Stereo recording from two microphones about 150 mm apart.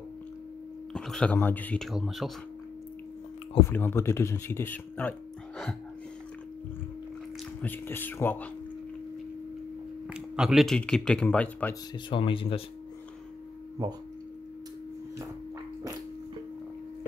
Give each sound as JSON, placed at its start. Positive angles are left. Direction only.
{"t": 0.9, "sound": "speech", "side_deg": 5}
{"t": 1.9, "sound": "speech", "side_deg": 0}
{"t": 3.6, "sound": "speech", "side_deg": 15}
{"t": 7.6, "sound": "speech", "side_deg": 15}
{"t": 10.0, "sound": "speech", "side_deg": -5}
{"t": 12.1, "sound": "speech", "side_deg": 35}